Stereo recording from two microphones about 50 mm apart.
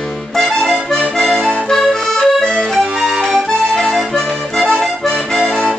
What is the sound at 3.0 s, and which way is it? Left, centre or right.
Music, centre.